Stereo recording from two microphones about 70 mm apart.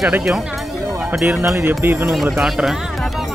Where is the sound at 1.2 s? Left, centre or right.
Right.